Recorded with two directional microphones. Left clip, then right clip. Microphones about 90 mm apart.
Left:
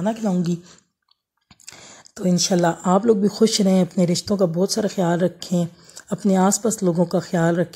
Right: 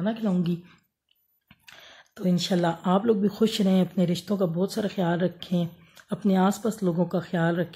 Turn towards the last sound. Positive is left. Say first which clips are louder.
# left 6 dB
turn(degrees=50)  # may be behind; listen again after turning